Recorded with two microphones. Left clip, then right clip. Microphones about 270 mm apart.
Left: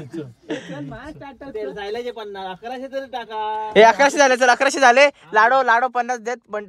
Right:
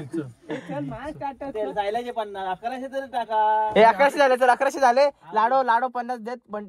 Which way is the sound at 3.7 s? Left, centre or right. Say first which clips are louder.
Left 6 dB; left.